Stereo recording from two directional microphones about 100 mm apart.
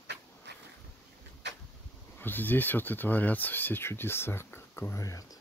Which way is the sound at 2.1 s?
20° left (ahead or behind).